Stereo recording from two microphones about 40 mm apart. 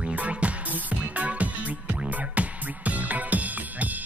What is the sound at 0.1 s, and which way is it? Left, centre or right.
Music, right.